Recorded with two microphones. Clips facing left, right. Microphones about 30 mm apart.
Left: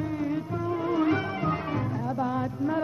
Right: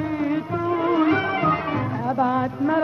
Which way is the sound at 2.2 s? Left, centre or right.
Right.